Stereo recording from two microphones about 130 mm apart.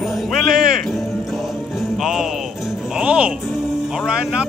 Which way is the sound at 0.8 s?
Centre (ahead or behind).